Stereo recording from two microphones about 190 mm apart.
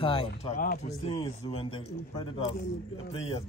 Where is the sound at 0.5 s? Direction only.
40° left (ahead or behind).